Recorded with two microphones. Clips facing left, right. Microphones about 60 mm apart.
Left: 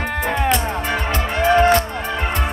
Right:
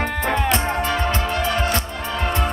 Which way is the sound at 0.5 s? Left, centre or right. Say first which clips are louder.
Even; right.